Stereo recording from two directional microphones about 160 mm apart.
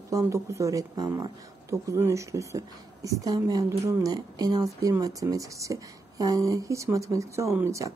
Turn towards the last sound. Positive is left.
turn(degrees=-15)  # may be behind; listen again after turning